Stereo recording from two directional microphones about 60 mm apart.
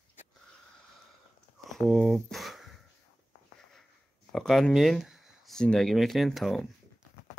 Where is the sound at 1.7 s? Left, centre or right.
Centre.